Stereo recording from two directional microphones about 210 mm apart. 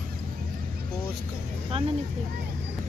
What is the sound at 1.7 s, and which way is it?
Vehicle, 25° right (ahead or behind).